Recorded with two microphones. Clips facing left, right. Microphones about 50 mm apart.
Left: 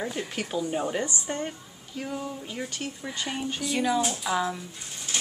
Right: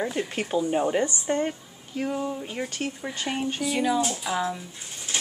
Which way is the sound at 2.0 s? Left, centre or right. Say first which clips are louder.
Right 5 dB; right.